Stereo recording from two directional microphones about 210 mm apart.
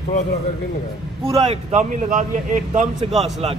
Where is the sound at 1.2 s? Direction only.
30° right (ahead or behind).